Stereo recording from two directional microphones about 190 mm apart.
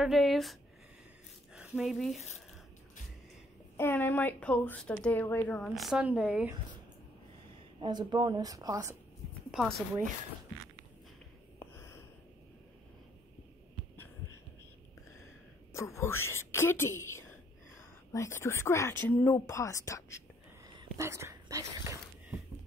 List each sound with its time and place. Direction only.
0.0 s speech: centre (ahead or behind)
3.7 s speech: 10° left (ahead or behind); by 6.5 s 5° right (ahead or behind)
7.8 s speech: 25° right (ahead or behind)
9.5 s speech: 5° right (ahead or behind)
11.6 s a sound: 15° left (ahead or behind)
15.7 s speech: 15° left (ahead or behind)
21.0 s speech: 15° right (ahead or behind)